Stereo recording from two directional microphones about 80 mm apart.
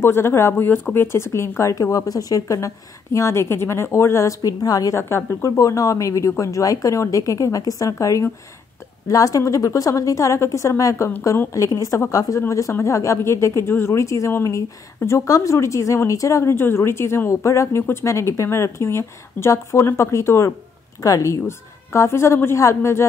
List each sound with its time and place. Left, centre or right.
0.0 s speech: left
4.5 s speech: left
4.9 s speech: left